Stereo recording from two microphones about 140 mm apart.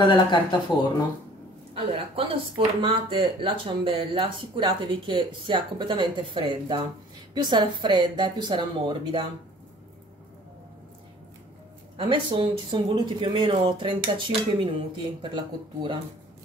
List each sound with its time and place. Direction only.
0.0 s speech: 35° left (ahead or behind)
1.7 s speech: 45° right (ahead or behind)
12.0 s speech: 35° right (ahead or behind)